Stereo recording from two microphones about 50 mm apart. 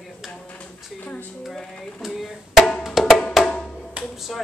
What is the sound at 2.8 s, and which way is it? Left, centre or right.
Music, centre.